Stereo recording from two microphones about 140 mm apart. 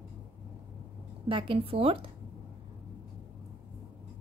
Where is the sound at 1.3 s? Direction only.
40° right (ahead or behind).